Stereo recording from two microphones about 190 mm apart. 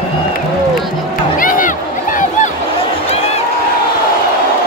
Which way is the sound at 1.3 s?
45° left (ahead or behind).